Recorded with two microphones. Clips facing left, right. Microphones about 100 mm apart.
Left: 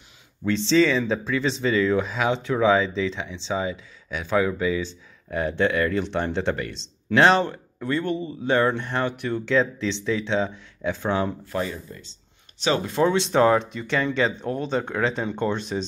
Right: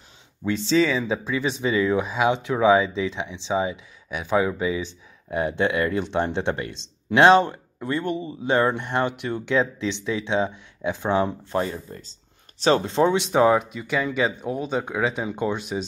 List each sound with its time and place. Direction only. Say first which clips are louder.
0.4 s speech: left 1 dB; 10° right (ahead or behind)
11.5 s speech: right 2 dB; 35° right (ahead or behind); by 15.8 s 10° right (ahead or behind)